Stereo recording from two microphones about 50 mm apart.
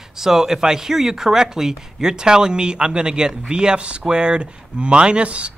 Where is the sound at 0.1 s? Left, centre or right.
Centre.